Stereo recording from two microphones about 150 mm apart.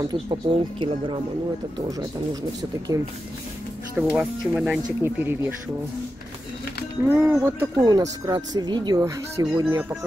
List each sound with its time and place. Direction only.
0.0 s speech: 30° right (ahead or behind)
3.9 s speech: 5° right (ahead or behind)
7.1 s speech: 15° right (ahead or behind)